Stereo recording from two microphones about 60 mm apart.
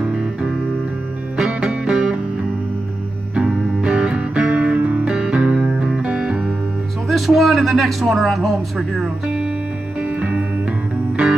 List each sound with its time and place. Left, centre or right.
0.0 s music: centre
3.3 s music: centre
7.1 s a man's voice: centre
9.9 s music: centre